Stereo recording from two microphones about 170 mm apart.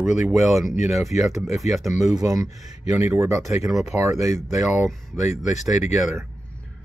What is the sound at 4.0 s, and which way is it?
Speech, 20° right (ahead or behind).